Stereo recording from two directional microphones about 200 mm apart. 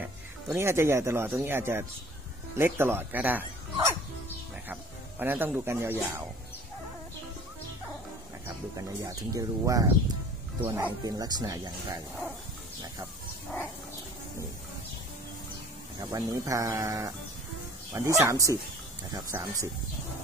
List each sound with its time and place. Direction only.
0.0 s speech: 10° right (ahead or behind)
5.2 s speech: 10° right (ahead or behind)
9.3 s speech: 15° right (ahead or behind)
16.1 s speech: 15° right (ahead or behind)